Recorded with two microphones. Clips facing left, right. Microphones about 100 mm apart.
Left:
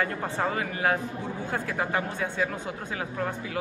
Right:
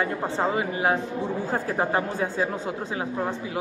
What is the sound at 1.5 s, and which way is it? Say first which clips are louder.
Speech: right 3 dB; 35° right (ahead or behind).